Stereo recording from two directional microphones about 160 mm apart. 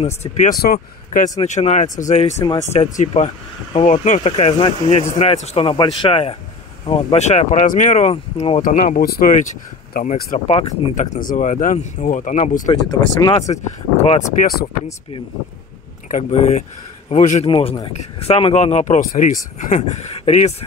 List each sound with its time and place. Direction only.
0.0 s speech: 45° left (ahead or behind)
0.6 s speech: 60° left (ahead or behind)
1.4 s speech: 45° left (ahead or behind)
4.3 s speech: 40° left (ahead or behind)
8.1 s speech: 40° left (ahead or behind)
8.6 s speech: 55° left (ahead or behind)
10.5 s speech: 40° left (ahead or behind)
11.1 s speech: 55° left (ahead or behind)
12.6 s speech: 25° left (ahead or behind)
14.4 s speech: 70° left (ahead or behind)
16.1 s speech: 45° left (ahead or behind)
17.5 s speech: 30° left (ahead or behind)